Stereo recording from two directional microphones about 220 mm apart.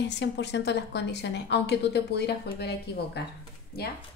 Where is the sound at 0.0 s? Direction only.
50° left (ahead or behind).